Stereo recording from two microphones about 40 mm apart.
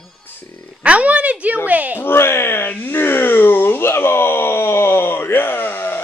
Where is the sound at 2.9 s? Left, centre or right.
Left.